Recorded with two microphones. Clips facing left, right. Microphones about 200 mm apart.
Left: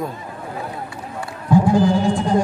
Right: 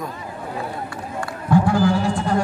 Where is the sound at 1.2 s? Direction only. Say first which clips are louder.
Left 1 dB; 15° left (ahead or behind).